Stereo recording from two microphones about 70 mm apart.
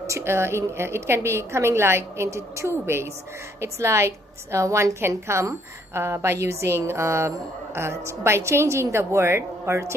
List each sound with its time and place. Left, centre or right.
0.0 s a woman's voice: right